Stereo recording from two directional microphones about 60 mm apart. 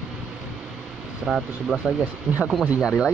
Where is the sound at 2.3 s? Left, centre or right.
Right.